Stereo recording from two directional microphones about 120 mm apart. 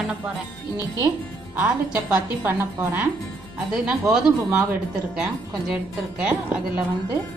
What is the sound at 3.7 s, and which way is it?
A woman's voice, 5° right (ahead or behind).